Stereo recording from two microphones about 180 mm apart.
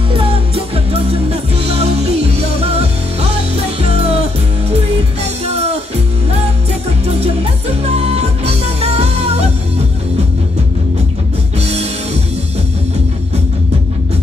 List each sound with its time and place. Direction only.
0.1 s music: 30° right (ahead or behind)
7.1 s music: 35° right (ahead or behind)
11.6 s music: 35° right (ahead or behind)